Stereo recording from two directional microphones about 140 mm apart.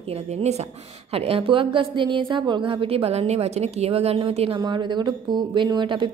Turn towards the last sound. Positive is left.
turn(degrees=-35)  # may be behind; listen again after turning